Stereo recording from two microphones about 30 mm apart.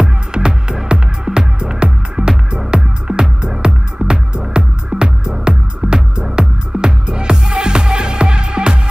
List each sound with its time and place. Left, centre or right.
0.0 s music: right